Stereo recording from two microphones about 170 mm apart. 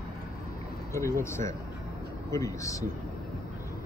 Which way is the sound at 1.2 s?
15° left (ahead or behind).